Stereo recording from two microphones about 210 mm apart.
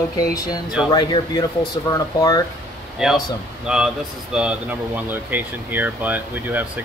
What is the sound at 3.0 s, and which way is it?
Speech, centre (ahead or behind).